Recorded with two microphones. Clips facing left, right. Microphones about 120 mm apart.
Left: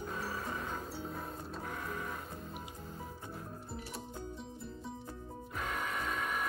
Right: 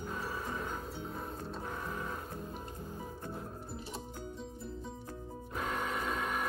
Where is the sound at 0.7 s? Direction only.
Centre (ahead or behind).